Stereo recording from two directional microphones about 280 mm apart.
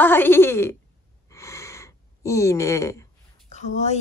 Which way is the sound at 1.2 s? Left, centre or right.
Centre.